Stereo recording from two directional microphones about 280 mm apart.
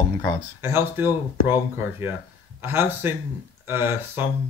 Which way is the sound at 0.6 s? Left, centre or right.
Centre.